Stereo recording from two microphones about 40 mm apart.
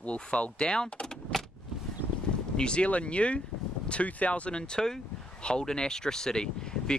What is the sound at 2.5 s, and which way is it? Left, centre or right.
Speech, left.